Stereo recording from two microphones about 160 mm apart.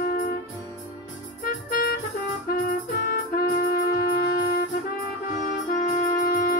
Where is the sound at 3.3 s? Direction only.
65° left (ahead or behind).